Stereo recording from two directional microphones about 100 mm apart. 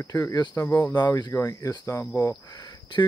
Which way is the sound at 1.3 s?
30° left (ahead or behind).